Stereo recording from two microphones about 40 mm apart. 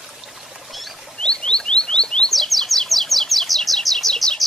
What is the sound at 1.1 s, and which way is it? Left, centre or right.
Rodents, left.